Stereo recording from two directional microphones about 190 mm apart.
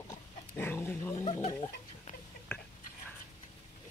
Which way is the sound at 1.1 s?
35° left (ahead or behind).